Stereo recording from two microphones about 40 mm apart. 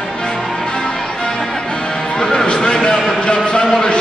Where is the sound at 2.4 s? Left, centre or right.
Left.